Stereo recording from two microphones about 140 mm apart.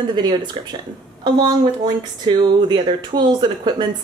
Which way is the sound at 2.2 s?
35° right (ahead or behind).